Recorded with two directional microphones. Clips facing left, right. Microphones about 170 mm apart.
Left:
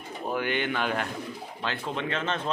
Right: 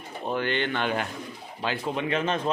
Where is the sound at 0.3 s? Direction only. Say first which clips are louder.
Right 1 dB; 10° left (ahead or behind).